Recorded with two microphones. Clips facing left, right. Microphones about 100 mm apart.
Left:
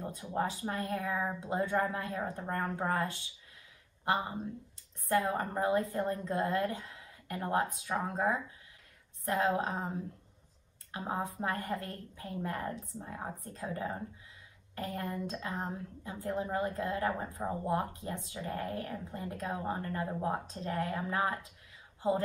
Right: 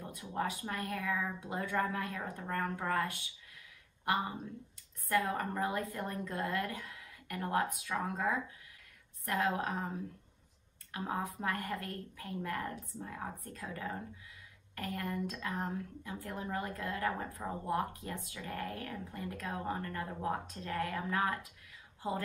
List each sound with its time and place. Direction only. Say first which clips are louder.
0.0 s a woman's voice: left 3 dB; 30° left (ahead or behind)
5.0 s a woman's voice: left 2 dB; 25° left (ahead or behind)